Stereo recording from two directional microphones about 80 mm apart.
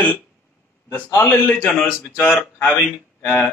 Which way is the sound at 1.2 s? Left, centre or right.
Left.